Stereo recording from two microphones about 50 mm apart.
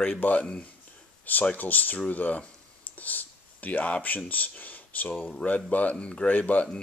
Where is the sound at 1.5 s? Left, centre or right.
Left.